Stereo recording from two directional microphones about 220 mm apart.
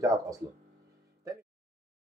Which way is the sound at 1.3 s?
15° right (ahead or behind).